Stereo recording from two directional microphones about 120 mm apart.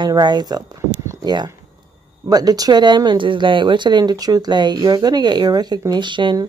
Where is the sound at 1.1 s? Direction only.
35° right (ahead or behind).